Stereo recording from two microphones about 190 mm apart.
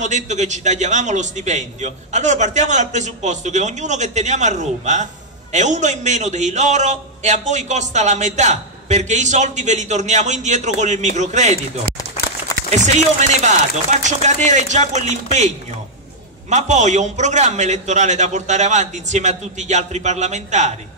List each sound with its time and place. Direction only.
0.0 s a man's voice: 40° right (ahead or behind)
16.4 s a man's voice: 40° right (ahead or behind)